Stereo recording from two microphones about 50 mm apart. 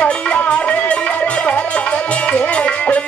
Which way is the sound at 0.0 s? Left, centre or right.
Left.